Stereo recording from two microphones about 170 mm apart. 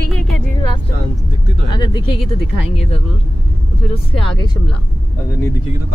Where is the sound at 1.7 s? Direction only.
25° left (ahead or behind).